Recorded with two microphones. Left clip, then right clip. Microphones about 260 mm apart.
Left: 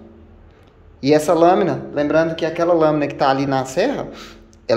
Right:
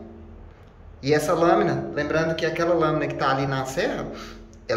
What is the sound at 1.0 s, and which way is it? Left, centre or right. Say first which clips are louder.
Speech: left 7 dB; left.